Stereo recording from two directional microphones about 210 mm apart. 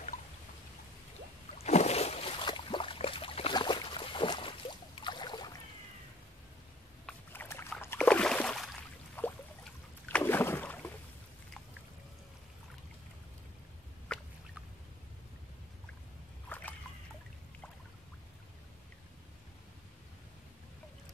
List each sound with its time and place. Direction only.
0.1 s raindrop: 40° left (ahead or behind)
1.6 s a sound: 30° left (ahead or behind)
7.1 s boat: 10° left (ahead or behind)
9.2 s a sound: 10° left (ahead or behind)
10.0 s rowboat: 10° left (ahead or behind)
16.4 s boat: 10° left (ahead or behind)